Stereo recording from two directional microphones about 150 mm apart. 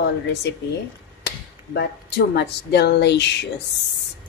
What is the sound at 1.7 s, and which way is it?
A woman's voice, 90° left.